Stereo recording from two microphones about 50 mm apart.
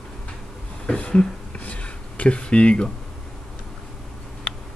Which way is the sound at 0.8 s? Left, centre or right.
Left.